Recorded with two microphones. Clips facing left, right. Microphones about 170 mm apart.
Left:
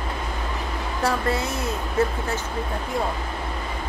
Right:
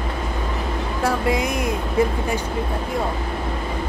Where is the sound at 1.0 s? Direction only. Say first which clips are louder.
Right 3 dB; 15° right (ahead or behind).